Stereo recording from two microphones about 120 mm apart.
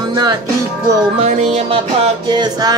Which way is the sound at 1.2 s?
65° right (ahead or behind).